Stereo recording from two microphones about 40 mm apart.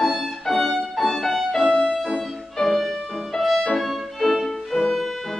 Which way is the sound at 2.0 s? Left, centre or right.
Centre.